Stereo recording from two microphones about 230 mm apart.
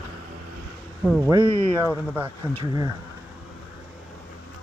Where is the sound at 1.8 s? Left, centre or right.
Centre.